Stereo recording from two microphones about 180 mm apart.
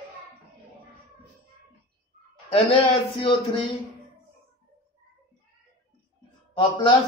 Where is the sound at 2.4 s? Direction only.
30° left (ahead or behind).